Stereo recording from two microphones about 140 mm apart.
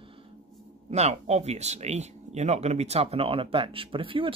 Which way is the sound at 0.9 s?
50° right (ahead or behind).